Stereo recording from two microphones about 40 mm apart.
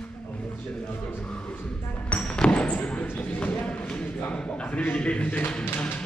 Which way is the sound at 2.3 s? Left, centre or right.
Left.